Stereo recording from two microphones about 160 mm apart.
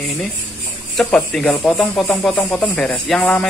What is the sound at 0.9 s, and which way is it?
Speech, 5° left (ahead or behind).